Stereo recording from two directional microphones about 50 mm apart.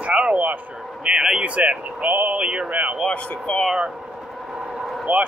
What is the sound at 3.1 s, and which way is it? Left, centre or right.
Speech, left.